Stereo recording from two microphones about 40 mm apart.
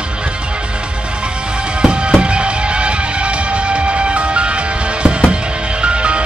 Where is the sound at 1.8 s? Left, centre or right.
Right.